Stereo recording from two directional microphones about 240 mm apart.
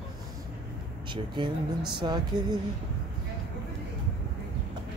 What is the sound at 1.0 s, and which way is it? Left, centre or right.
Speech, centre.